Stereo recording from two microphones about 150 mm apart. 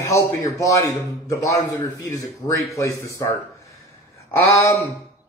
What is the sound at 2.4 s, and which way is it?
Speech, 25° left (ahead or behind).